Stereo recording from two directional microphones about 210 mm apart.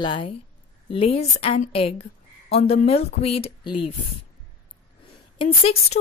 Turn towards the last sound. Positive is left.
turn(degrees=25)  # may be behind; listen again after turning